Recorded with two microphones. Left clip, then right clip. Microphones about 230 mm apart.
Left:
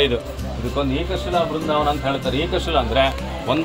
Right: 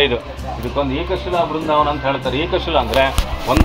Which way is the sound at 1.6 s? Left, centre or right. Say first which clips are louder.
Right 4 dB; left.